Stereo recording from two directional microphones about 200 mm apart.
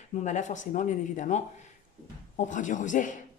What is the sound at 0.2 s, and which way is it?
Speech, 35° left (ahead or behind).